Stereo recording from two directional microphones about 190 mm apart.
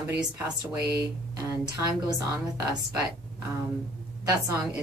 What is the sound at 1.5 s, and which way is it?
Speech, 15° right (ahead or behind).